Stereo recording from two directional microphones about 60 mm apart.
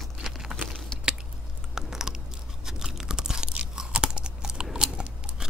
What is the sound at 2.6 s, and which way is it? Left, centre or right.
Crunch, centre.